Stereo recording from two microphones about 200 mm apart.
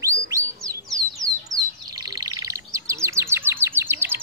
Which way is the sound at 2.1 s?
15° right (ahead or behind).